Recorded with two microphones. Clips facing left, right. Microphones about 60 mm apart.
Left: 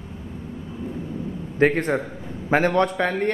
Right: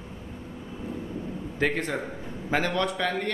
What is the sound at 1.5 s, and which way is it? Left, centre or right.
A man's voice, left.